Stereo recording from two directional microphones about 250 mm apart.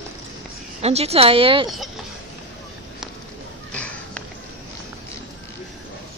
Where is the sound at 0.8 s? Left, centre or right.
Right.